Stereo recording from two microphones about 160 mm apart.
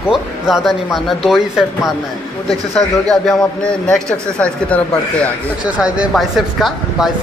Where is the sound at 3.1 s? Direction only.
5° left (ahead or behind).